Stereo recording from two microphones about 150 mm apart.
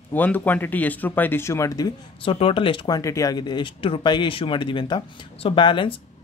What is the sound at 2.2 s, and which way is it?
Speech, 40° left (ahead or behind).